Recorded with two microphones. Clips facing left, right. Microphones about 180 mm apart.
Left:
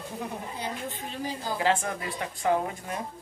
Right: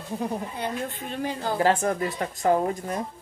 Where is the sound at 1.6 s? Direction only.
45° right (ahead or behind).